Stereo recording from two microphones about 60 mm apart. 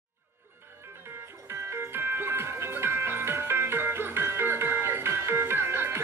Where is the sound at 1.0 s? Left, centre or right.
Right.